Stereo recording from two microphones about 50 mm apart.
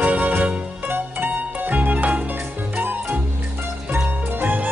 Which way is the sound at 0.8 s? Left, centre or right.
Right.